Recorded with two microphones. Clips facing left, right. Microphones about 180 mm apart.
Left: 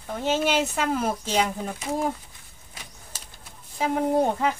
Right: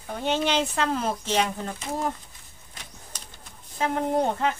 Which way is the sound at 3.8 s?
10° left (ahead or behind).